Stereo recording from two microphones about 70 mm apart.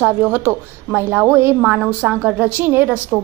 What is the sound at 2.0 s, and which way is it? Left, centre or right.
Speech, centre.